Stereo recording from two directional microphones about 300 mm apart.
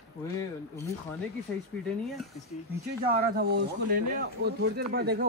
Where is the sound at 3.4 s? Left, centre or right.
Right.